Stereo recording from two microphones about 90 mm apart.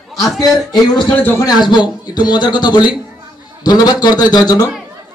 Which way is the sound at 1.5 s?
55° left (ahead or behind).